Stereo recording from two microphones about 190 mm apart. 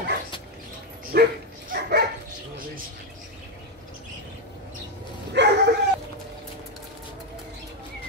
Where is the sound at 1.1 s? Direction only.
55° right (ahead or behind).